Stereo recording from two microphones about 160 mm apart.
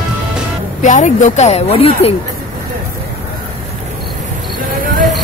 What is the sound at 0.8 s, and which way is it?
Speech, 50° left (ahead or behind).